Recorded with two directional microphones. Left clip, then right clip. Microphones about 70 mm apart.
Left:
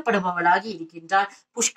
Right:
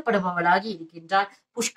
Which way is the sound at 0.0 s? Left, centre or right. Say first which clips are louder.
Left 2 dB; centre.